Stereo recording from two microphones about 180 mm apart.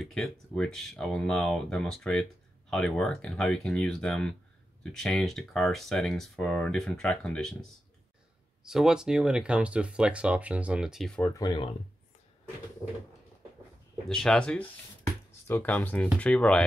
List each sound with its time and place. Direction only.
0.0 s speech: 5° left (ahead or behind)
11.3 s speech: 25° left (ahead or behind)
14.0 s speech: 5° left (ahead or behind)